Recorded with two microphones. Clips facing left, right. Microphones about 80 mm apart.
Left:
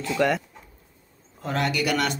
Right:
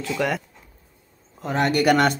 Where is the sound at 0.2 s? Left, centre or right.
Centre.